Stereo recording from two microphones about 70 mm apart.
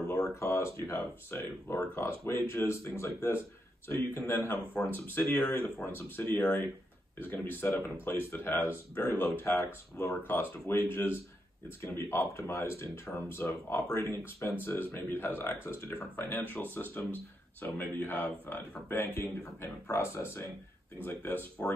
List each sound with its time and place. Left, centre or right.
0.4 s speech: left